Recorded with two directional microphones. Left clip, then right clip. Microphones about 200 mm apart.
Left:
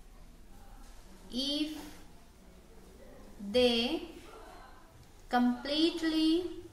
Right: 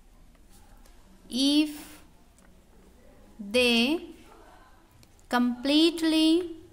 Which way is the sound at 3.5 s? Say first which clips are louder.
Right 5 dB; 55° right (ahead or behind).